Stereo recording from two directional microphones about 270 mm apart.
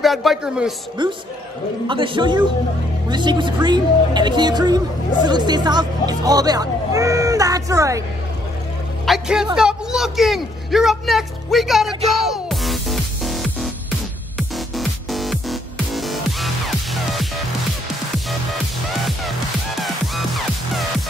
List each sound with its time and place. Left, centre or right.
0.0 s a woman's voice: centre
1.0 s a woman's voice: centre
9.0 s a woman's voice: centre
12.3 s music: centre
14.8 s music: centre
18.5 s music: centre